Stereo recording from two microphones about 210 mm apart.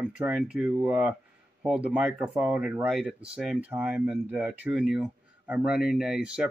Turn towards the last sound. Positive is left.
turn(degrees=-5)  # may be behind; listen again after turning